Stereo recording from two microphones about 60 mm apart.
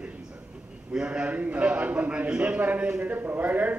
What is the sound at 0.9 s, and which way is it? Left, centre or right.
A man's voice, centre.